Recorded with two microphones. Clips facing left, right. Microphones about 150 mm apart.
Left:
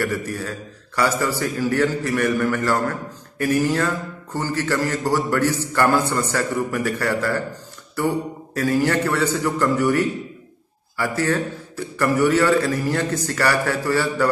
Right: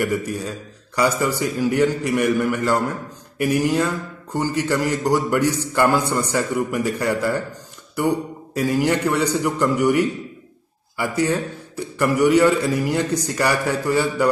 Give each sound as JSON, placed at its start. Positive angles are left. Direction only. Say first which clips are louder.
{"t": 0.0, "sound": "a man's voice", "louder": "right 2 dB", "side_deg": -15}